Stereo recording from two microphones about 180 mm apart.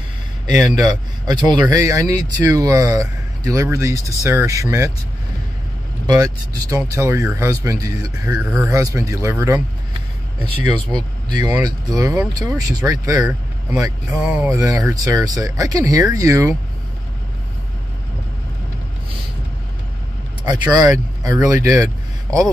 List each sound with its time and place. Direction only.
0.7 s speech: 20° right (ahead or behind)
6.0 s speech: 20° right (ahead or behind)
14.2 s speech: 10° right (ahead or behind)
14.6 s speech: 20° right (ahead or behind)
20.7 s speech: 20° right (ahead or behind)